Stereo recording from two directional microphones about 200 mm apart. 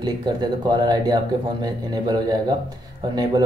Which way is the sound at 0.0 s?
20° right (ahead or behind).